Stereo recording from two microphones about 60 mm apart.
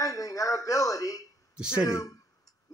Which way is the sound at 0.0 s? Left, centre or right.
Left.